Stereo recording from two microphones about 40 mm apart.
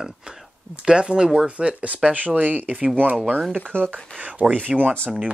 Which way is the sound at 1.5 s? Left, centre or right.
Right.